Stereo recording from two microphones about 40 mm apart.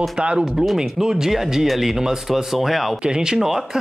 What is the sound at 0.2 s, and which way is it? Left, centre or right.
Speech, right.